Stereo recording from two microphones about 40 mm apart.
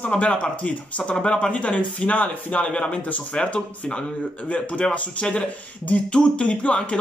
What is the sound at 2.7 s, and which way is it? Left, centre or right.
Speech, left.